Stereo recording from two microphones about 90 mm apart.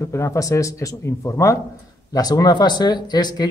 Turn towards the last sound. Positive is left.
turn(degrees=50)  # may be behind; listen again after turning